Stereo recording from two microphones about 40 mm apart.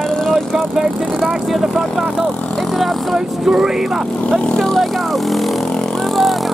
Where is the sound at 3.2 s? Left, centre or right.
Centre.